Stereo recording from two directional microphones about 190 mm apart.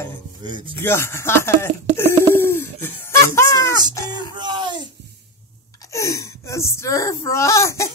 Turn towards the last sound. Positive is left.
turn(degrees=15)  # may be behind; listen again after turning